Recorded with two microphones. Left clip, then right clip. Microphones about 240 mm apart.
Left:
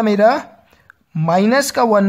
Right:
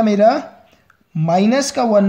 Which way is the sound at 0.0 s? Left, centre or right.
Left.